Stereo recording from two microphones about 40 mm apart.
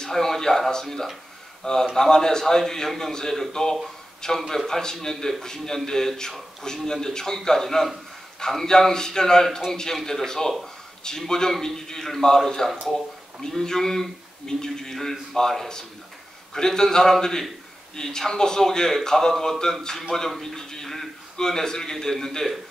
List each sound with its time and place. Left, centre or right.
0.0 s a sound: centre
1.6 s a man's voice: centre
4.6 s a man's voice: centre